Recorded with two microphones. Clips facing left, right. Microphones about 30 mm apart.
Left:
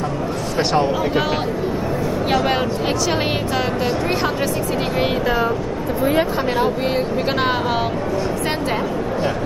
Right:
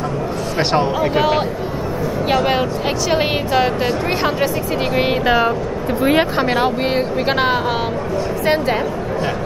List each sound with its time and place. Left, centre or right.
0.6 s speech: centre
0.9 s speech: centre
5.2 s speech: right
7.2 s speech: centre